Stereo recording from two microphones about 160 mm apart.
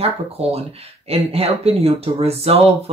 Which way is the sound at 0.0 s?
40° right (ahead or behind).